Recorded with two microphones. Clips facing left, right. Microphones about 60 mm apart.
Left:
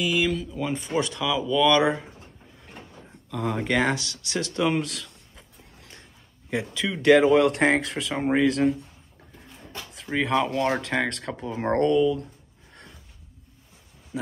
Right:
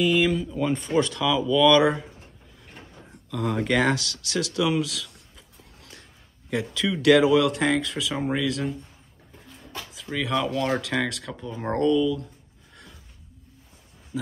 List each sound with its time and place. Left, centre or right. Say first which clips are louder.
0.0 s speech: right 3 dB; centre
0.9 s speech: right 2 dB; centre
3.3 s speech: right 1 dB; centre
3.7 s speech: right 1 dB; left
5.3 s a sound: left 1 dB; left
6.5 s speech: right 2 dB; left
7.2 s speech: left 2 dB; left
10.3 s speech: left 1 dB; left
11.1 s speech: left 2 dB; left
14.1 s a sound: even; left